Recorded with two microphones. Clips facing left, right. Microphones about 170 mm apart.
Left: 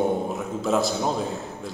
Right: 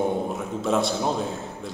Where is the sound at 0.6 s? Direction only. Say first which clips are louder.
Even; centre (ahead or behind).